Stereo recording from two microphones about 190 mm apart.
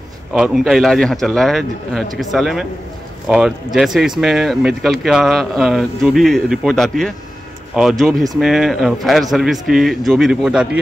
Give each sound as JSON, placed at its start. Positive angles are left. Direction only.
{"t": 0.3, "sound": "speech", "side_deg": -5}